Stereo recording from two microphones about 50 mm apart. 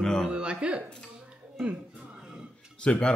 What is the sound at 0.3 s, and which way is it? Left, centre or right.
Speech, right.